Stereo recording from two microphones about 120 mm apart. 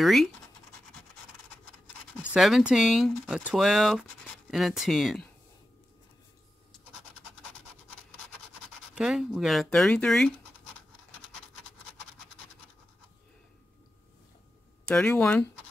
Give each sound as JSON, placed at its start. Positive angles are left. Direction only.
{"t": 0.0, "sound": "speech", "side_deg": 0}
{"t": 2.3, "sound": "speech", "side_deg": -5}
{"t": 8.9, "sound": "speech", "side_deg": -5}
{"t": 14.9, "sound": "speech", "side_deg": 5}